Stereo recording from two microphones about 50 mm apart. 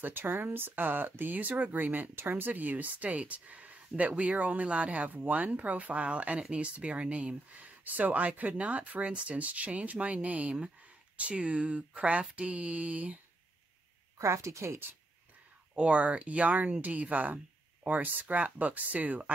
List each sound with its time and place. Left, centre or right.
0.0 s speech: right
14.1 s a woman's voice: right
15.7 s speech: right